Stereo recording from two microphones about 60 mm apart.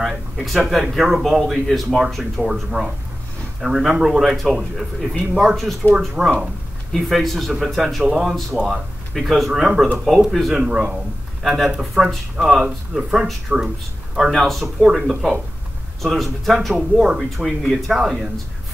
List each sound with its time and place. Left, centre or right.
0.1 s speech: centre
2.8 s speech: right
3.6 s speech: centre